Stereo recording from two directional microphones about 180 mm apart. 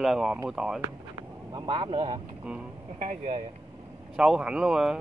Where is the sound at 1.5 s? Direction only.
25° right (ahead or behind).